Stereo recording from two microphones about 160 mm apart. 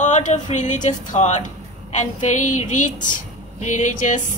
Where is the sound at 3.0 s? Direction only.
50° left (ahead or behind).